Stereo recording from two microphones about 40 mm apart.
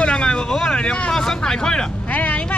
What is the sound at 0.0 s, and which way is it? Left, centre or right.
Vehicle, left.